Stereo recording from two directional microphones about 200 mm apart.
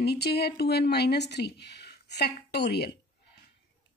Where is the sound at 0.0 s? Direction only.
55° left (ahead or behind).